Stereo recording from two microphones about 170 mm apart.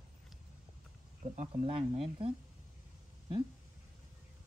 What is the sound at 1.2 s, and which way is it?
Speech, 40° right (ahead or behind).